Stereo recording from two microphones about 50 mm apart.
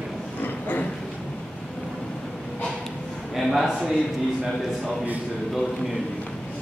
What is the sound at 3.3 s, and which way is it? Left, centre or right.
Speech, centre.